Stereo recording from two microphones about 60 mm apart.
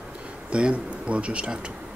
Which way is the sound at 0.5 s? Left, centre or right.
Centre.